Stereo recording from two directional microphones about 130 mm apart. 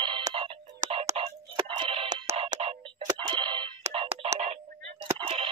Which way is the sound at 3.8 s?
50° right (ahead or behind).